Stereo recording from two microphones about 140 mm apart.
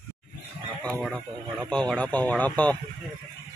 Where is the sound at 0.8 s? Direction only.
Centre (ahead or behind).